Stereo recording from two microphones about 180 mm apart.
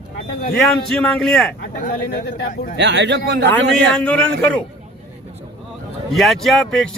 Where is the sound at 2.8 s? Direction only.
75° right (ahead or behind).